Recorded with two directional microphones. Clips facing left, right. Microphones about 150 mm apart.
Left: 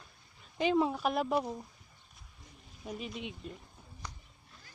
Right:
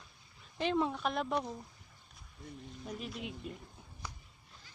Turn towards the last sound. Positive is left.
turn(degrees=0)  # may be behind; listen again after turning